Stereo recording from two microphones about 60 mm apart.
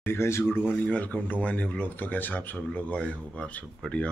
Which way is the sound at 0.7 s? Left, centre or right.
Left.